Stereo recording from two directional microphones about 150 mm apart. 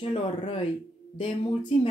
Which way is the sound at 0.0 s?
40° left (ahead or behind).